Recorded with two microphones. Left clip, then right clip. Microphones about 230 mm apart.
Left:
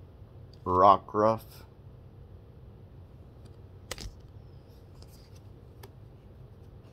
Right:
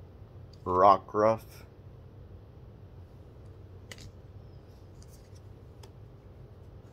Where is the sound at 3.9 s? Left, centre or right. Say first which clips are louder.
Left 7 dB; left.